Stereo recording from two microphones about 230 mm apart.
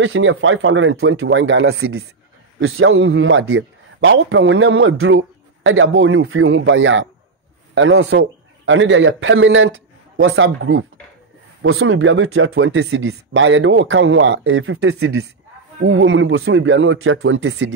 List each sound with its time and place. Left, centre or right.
0.0 s speech: right